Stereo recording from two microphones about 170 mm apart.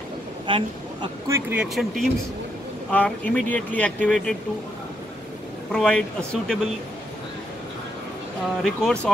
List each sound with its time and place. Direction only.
0.5 s speech: 30° right (ahead or behind)
1.3 s speech: 5° right (ahead or behind)
5.7 s speech: 5° left (ahead or behind)
8.6 s speech: 5° left (ahead or behind)